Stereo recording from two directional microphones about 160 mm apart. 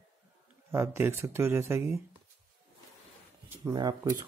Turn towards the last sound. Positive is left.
turn(degrees=-20)  # may be behind; listen again after turning